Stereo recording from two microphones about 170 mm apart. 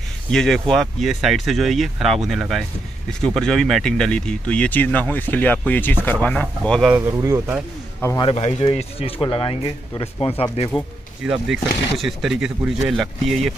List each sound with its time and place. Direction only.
0.3 s speech: 5° left (ahead or behind)
7.0 s speech: 20° right (ahead or behind)
8.4 s speech: 35° left (ahead or behind)
11.2 s speech: 5° right (ahead or behind)